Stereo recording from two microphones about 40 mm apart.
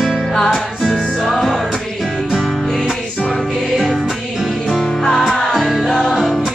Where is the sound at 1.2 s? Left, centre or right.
Centre.